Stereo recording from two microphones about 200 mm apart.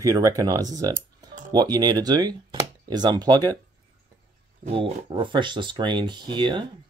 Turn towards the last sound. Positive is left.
turn(degrees=-25)  # may be behind; listen again after turning